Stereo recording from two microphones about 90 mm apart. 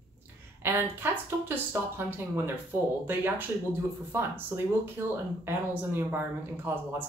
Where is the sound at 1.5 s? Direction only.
25° right (ahead or behind).